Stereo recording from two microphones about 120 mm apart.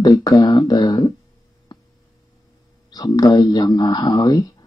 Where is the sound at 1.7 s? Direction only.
35° left (ahead or behind).